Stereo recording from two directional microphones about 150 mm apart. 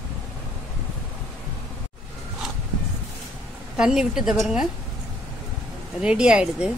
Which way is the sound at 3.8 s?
5° right (ahead or behind).